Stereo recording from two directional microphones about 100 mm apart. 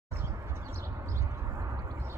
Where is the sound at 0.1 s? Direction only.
30° right (ahead or behind).